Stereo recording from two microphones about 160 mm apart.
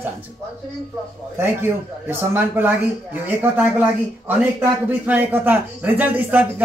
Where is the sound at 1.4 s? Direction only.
15° right (ahead or behind).